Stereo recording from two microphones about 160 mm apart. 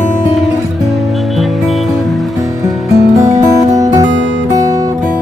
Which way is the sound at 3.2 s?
20° right (ahead or behind).